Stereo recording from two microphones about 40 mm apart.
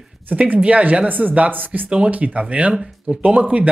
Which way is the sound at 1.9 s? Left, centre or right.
Right.